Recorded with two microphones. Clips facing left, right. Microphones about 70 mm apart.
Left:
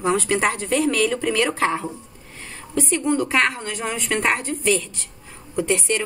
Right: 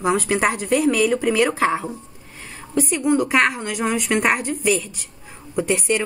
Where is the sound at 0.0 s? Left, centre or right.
Centre.